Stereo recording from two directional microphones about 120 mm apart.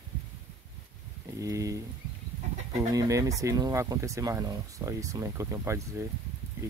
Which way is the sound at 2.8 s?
30° right (ahead or behind).